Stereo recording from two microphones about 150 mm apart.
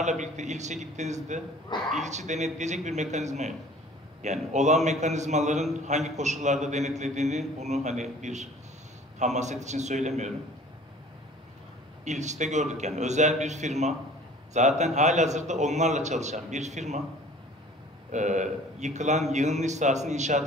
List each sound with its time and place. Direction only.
0.0 s a man's voice: 50° right (ahead or behind)
12.0 s a man's voice: 50° right (ahead or behind)
18.1 s a man's voice: 55° right (ahead or behind)